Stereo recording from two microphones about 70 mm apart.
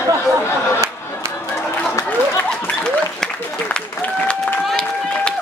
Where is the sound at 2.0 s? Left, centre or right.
Left.